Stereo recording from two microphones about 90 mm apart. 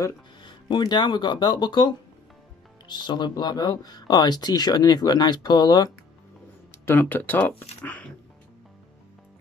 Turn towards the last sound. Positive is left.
turn(degrees=20)  # may be behind; listen again after turning